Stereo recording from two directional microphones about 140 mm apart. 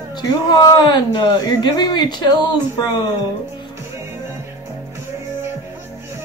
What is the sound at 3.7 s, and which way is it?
Music, 20° right (ahead or behind).